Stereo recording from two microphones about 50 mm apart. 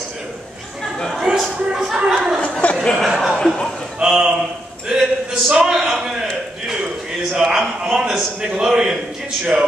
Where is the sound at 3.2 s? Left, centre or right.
Centre.